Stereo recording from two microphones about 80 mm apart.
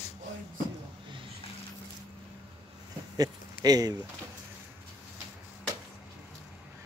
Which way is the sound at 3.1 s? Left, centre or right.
Right.